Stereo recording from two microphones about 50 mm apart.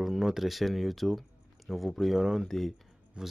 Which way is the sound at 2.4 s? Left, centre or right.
Centre.